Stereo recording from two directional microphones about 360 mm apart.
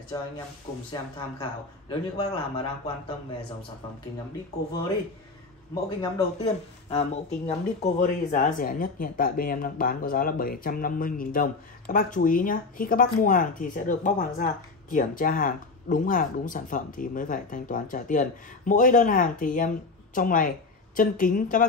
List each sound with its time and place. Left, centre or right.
0.1 s a man's voice: centre
1.4 s a man's voice: centre
5.9 s a man's voice: centre